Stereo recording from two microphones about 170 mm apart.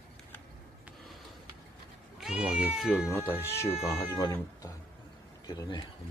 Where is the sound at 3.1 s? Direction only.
10° left (ahead or behind); by 5.8 s 25° left (ahead or behind).